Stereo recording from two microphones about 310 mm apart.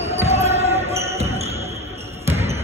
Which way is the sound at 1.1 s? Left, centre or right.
Centre.